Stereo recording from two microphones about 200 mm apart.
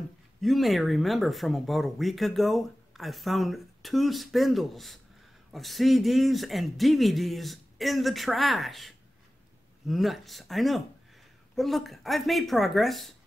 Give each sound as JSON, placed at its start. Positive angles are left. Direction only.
{"t": 0.4, "sound": "speech", "side_deg": 0}